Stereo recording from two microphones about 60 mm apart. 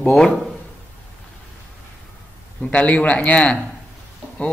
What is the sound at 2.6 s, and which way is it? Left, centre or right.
A man's voice, centre.